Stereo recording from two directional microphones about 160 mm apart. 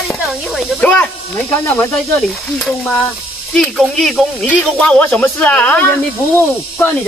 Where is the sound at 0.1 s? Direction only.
Centre (ahead or behind).